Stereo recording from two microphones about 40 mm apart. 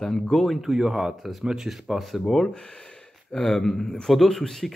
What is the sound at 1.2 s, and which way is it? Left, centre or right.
Speech, centre.